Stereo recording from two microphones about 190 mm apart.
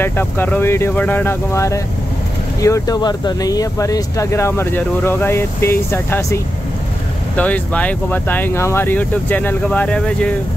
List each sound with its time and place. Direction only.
0.0 s speech: 10° left (ahead or behind)